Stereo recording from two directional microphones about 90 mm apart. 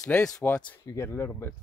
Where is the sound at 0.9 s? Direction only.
30° left (ahead or behind).